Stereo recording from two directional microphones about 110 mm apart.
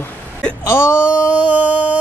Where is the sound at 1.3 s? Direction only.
10° right (ahead or behind).